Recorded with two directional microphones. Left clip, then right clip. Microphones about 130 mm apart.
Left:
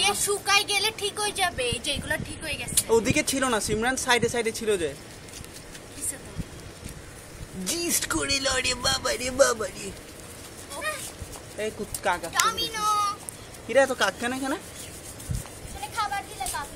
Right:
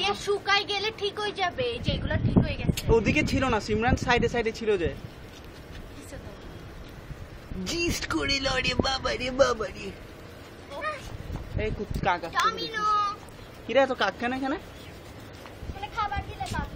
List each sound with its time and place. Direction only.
0.0 s speech: centre (ahead or behind)
7.8 s speech: 10° right (ahead or behind)
11.5 s speech: 10° right (ahead or behind)
13.8 s speech: 5° right (ahead or behind)
16.0 s a sound: 15° left (ahead or behind)